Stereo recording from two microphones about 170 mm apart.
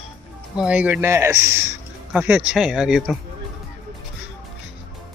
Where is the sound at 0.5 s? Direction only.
5° right (ahead or behind).